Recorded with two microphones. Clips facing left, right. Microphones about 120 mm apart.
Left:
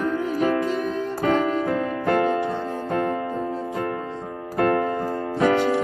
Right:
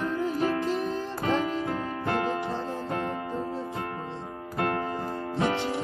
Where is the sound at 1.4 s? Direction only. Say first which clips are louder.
Left 6 dB; 50° left (ahead or behind).